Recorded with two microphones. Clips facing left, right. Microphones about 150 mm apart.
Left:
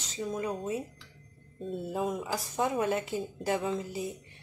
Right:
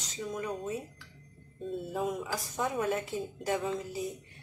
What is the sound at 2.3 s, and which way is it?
Speech, 25° left (ahead or behind).